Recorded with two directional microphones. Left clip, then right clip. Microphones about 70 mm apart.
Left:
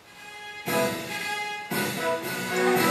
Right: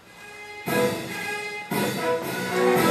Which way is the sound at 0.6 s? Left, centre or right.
Centre.